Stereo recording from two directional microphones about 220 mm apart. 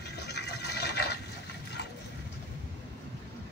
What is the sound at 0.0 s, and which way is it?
Fill, 50° left (ahead or behind).